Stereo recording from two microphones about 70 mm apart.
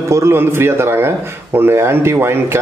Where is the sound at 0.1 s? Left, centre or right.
Right.